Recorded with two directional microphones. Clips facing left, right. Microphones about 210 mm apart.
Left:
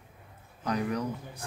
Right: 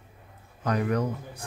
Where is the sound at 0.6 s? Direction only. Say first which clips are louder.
Right 4 dB; 55° right (ahead or behind).